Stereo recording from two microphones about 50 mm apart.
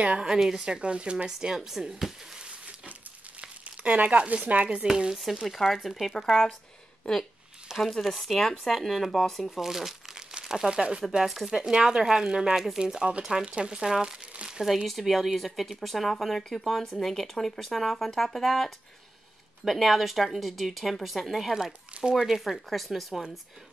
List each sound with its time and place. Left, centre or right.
0.0 s speech: right
0.3 s speech: centre
0.6 s speech: centre
2.4 s a sound: right
5.1 s a woman's voice: centre
7.7 s a woman's voice: centre
9.6 s crumpling: centre
10.7 s speech: centre
11.2 s a woman's voice: centre; by 13.7 s right
13.7 s speech: centre
14.3 s crumpling: centre
14.9 s a woman's voice: centre